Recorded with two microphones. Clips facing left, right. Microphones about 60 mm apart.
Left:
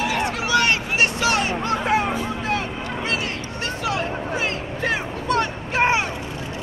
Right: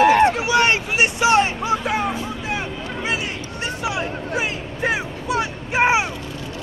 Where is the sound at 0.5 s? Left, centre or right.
Right.